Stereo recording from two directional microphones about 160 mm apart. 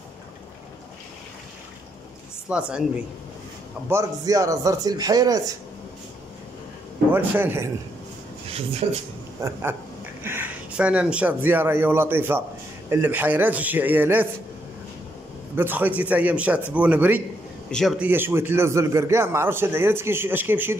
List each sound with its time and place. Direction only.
2.5 s a man's voice: 5° right (ahead or behind)
3.9 s speech: 20° right (ahead or behind)
7.1 s a man's voice: 10° right (ahead or behind)
8.8 s speech: 40° right (ahead or behind)
9.4 s a man's voice: 15° right (ahead or behind)
15.5 s a man's voice: 10° right (ahead or behind)
17.6 s a man's voice: 5° left (ahead or behind)
17.9 s a man's voice: 10° right (ahead or behind)